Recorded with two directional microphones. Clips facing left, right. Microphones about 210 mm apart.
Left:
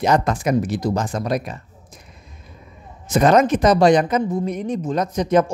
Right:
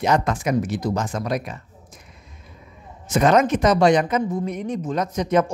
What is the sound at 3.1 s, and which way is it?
Speech, 35° left (ahead or behind).